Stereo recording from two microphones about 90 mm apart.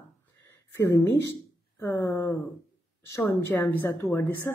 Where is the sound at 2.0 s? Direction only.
35° left (ahead or behind).